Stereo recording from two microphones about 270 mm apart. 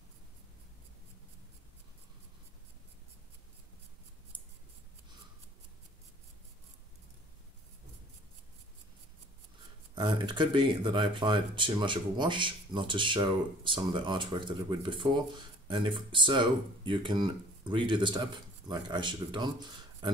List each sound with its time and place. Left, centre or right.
9.9 s speech: centre